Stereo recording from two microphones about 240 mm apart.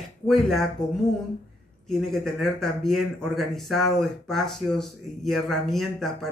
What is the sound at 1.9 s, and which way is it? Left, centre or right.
Speech, centre.